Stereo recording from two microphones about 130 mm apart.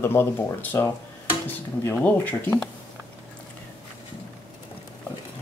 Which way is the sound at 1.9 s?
15° left (ahead or behind).